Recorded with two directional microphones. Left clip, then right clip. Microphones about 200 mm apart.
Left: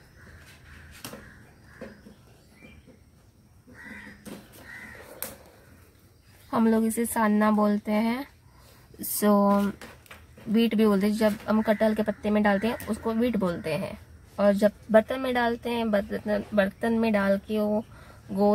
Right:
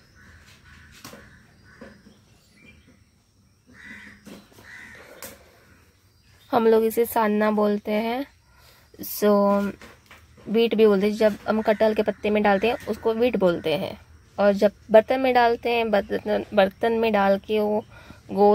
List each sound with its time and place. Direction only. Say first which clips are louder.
6.5 s speech: right 7 dB; 25° right (ahead or behind)